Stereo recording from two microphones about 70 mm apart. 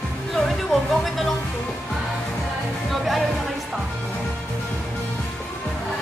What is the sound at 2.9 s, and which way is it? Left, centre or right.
Music, centre.